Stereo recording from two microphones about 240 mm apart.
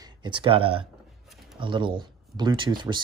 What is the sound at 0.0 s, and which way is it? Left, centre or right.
Speech, centre.